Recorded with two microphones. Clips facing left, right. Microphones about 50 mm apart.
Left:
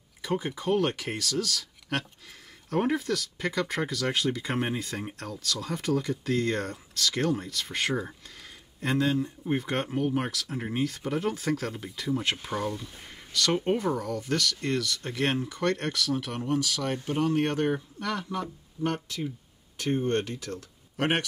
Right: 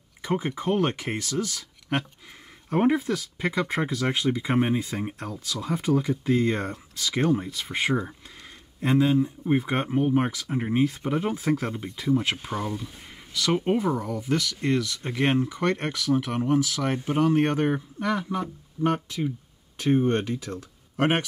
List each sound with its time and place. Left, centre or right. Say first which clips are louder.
0.2 s a sound: right 3 dB; right
0.7 s speech: right 1 dB; right
9.8 s speech: right 5 dB; right